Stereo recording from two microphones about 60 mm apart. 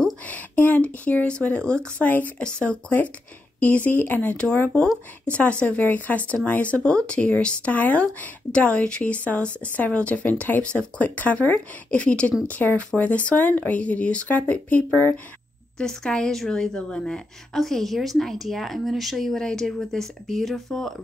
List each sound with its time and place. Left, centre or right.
0.0 s speech: left
2.0 s speech: left
15.8 s a woman's voice: centre